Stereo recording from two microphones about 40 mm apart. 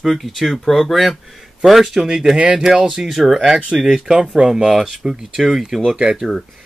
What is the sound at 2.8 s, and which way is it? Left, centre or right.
Speech, centre.